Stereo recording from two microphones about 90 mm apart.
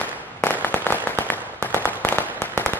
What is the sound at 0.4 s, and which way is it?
Firecracker, 20° left (ahead or behind).